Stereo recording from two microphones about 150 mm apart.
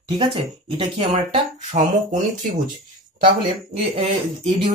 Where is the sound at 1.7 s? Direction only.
55° right (ahead or behind).